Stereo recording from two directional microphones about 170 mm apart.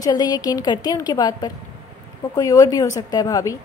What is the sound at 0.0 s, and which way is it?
A woman's voice, 20° left (ahead or behind).